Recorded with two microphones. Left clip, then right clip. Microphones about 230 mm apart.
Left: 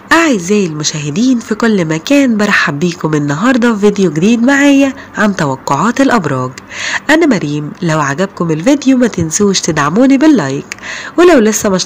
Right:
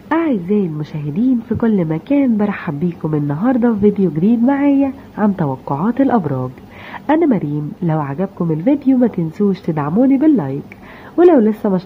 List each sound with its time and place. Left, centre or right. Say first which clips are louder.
0.1 s speech: left 7 dB; centre